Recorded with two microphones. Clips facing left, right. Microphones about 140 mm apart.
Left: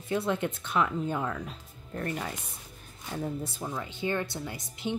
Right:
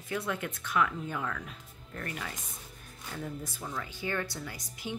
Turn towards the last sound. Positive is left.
turn(degrees=25)  # may be behind; listen again after turning